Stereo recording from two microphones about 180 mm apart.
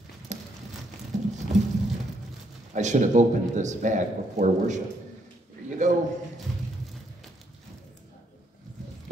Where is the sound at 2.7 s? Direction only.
40° right (ahead or behind).